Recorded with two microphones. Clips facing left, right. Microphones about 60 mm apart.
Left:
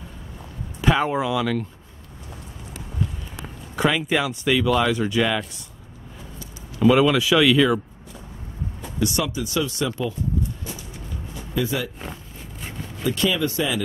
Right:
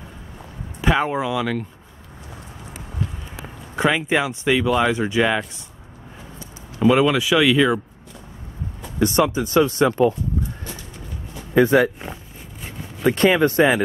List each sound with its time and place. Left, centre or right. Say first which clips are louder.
0.7 s speech: right 1 dB; centre
3.7 s speech: right 2 dB; right
6.8 s speech: even; centre
9.0 s speech: right 6 dB; right
11.5 s speech: right 10 dB; right
13.0 s speech: right 6 dB; right